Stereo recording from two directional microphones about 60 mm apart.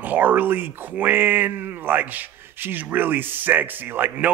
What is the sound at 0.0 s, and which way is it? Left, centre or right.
Speech, right.